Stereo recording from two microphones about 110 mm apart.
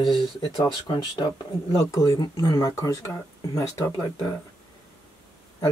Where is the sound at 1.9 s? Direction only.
30° left (ahead or behind).